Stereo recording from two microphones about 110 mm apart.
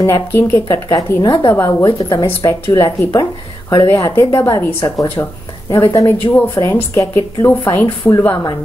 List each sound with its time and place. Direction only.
0.0 s speech: 20° left (ahead or behind)
0.8 s speech: 30° left (ahead or behind)
5.9 s speech: 20° left (ahead or behind)
6.5 s speech: 30° left (ahead or behind)